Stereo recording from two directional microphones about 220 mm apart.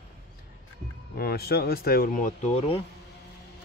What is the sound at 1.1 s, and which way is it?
Speech, 45° left (ahead or behind).